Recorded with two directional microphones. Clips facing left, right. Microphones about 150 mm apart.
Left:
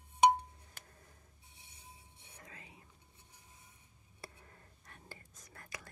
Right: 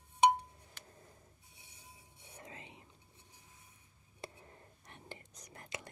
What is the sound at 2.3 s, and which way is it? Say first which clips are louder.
Whispering: right 4 dB; 25° right (ahead or behind).